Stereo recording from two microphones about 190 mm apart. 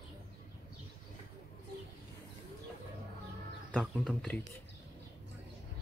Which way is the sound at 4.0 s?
5° left (ahead or behind).